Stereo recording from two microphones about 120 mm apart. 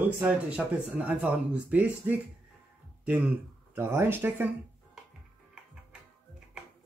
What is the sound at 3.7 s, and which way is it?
Speech, 20° right (ahead or behind).